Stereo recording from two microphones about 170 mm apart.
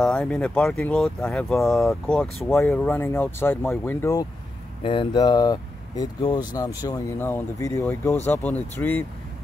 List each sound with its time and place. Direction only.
0.0 s speech: 5° left (ahead or behind)